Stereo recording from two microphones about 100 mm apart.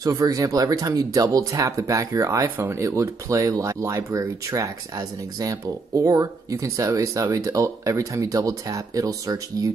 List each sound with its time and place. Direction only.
0.0 s speech: 35° right (ahead or behind)
2.4 s speech: 20° right (ahead or behind)
2.8 s speech: 30° right (ahead or behind)